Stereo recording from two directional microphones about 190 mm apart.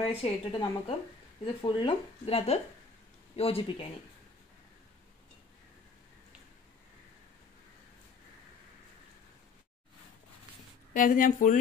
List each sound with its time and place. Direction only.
0.0 s speech: 30° left (ahead or behind)
10.9 s speech: 45° left (ahead or behind)